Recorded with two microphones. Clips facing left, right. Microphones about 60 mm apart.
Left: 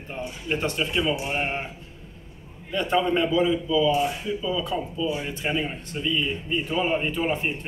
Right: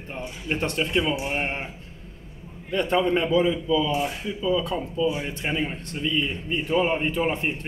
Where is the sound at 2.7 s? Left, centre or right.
Right.